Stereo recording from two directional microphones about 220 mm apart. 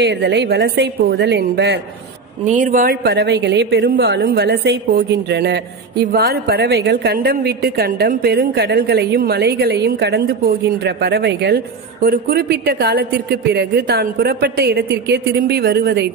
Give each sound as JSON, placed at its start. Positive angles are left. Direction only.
{"t": 0.0, "sound": "a woman's voice", "side_deg": -50}
{"t": 2.4, "sound": "a woman's voice", "side_deg": -35}